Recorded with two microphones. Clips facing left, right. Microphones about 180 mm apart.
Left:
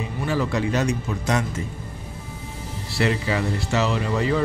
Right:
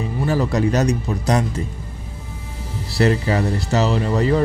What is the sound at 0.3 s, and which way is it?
Speech, 40° right (ahead or behind).